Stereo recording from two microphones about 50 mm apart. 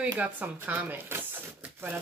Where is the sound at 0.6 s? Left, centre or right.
Right.